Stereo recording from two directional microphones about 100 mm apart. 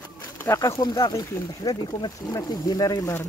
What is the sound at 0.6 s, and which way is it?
Speech, 40° left (ahead or behind).